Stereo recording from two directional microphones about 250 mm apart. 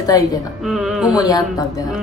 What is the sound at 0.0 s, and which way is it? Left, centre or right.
Speech, centre.